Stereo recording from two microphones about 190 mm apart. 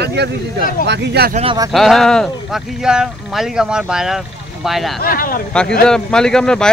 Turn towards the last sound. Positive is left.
turn(degrees=5)  # may be behind; listen again after turning